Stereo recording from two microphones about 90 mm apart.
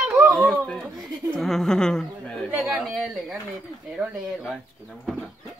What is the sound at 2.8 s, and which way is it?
Speech, 10° right (ahead or behind).